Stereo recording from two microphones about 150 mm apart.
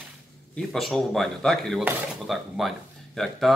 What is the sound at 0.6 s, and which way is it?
Speech, 5° left (ahead or behind).